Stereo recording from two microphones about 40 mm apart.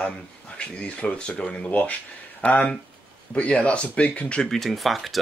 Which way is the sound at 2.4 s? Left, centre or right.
Left.